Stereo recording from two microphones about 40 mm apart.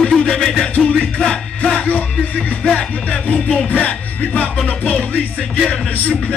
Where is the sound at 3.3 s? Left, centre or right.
Centre.